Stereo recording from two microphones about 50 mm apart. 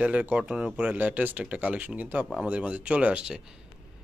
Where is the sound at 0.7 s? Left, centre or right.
Right.